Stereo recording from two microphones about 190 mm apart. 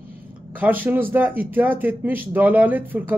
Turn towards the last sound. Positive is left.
turn(degrees=-10)  # may be behind; listen again after turning